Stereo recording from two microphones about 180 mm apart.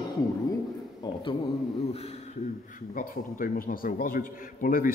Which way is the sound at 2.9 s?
50° left (ahead or behind).